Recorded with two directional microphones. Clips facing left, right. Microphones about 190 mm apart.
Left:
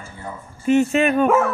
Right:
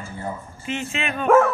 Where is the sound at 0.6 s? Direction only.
45° left (ahead or behind).